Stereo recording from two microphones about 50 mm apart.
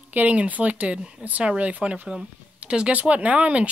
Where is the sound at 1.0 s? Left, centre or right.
Centre.